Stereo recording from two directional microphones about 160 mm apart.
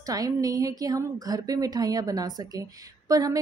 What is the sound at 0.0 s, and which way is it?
A woman's voice, 20° right (ahead or behind).